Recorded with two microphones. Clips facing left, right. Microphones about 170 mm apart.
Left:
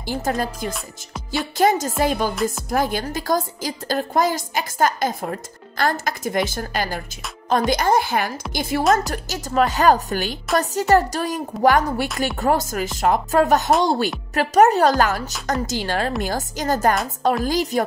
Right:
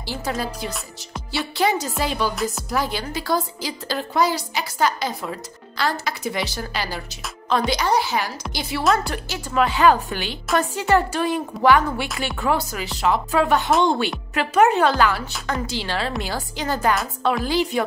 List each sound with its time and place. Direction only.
0.0 s a woman's voice: 45° left (ahead or behind)